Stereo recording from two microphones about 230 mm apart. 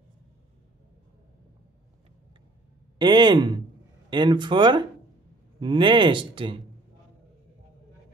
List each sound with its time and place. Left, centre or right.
3.0 s speech: centre